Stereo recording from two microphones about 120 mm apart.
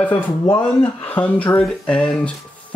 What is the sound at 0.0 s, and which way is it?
Speech, 20° left (ahead or behind).